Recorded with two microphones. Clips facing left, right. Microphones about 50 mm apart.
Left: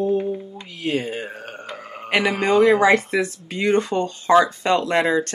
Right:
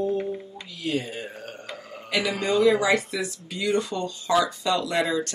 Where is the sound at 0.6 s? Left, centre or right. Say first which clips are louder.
Left 4 dB; left.